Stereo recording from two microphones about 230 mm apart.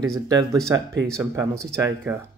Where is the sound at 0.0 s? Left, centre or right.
Centre.